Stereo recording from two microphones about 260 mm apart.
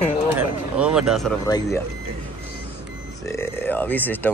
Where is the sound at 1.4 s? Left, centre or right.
Centre.